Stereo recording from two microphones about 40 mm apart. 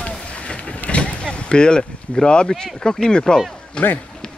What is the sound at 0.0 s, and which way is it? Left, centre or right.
Vehicle, left.